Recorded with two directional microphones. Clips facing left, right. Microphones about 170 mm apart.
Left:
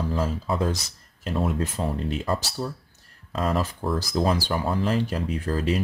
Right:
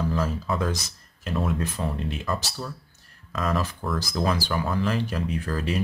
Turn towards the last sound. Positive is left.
turn(degrees=25)  # may be behind; listen again after turning